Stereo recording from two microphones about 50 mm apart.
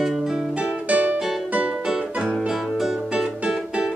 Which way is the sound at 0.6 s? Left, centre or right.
Right.